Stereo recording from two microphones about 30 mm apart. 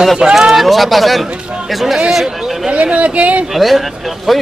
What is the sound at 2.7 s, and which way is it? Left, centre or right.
Speech, right.